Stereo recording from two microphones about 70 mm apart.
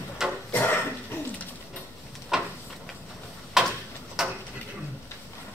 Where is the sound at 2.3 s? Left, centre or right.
Centre.